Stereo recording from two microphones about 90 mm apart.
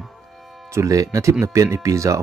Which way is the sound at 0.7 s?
35° right (ahead or behind).